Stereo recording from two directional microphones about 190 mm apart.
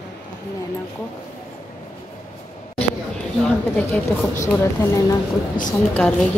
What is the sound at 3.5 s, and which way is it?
A woman's voice, 5° left (ahead or behind).